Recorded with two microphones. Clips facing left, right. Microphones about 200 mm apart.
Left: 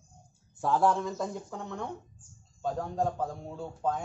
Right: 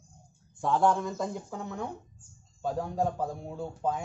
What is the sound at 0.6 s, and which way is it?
Speech, centre (ahead or behind).